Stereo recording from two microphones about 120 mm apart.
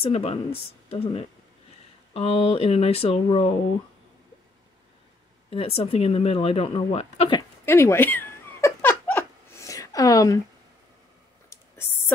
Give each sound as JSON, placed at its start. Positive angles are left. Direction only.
{"t": 0.0, "sound": "speech", "side_deg": 55}
{"t": 5.5, "sound": "speech", "side_deg": 50}
{"t": 7.6, "sound": "a sound", "side_deg": 20}